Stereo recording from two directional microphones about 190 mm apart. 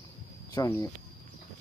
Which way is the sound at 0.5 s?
15° left (ahead or behind).